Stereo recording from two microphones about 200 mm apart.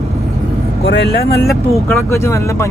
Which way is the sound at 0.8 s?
60° left (ahead or behind).